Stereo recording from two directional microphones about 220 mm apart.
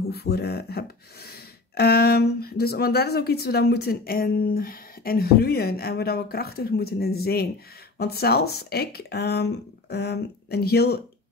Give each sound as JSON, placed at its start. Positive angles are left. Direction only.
{"t": 0.1, "sound": "speech", "side_deg": 45}